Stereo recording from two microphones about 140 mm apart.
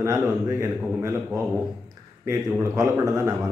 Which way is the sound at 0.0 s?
20° right (ahead or behind).